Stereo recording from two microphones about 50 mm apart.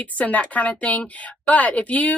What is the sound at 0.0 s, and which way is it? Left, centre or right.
A woman's voice, left.